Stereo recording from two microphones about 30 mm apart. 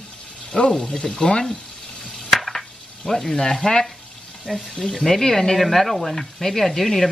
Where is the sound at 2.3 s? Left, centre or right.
Centre.